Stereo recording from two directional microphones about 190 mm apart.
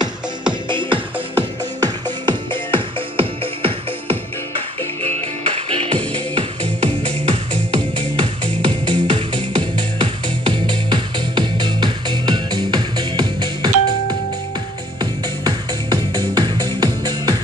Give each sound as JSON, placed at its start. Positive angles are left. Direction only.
{"t": 0.5, "sound": "music", "side_deg": -25}
{"t": 5.7, "sound": "music", "side_deg": -30}
{"t": 15.0, "sound": "music", "side_deg": -20}